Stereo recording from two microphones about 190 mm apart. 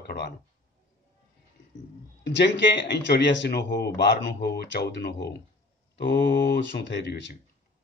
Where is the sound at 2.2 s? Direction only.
65° left (ahead or behind).